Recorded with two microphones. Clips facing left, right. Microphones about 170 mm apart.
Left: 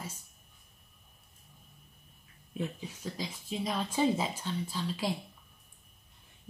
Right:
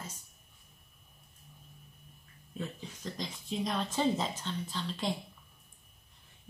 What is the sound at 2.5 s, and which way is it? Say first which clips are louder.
Speech: left 3 dB; 10° left (ahead or behind).